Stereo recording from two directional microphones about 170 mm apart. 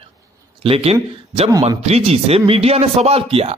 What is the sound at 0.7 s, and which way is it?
Speech, 35° right (ahead or behind).